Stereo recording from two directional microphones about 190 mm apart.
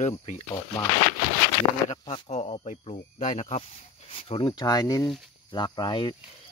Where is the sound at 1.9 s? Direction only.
35° left (ahead or behind).